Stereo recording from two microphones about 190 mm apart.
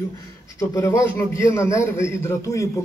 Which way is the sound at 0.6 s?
15° left (ahead or behind).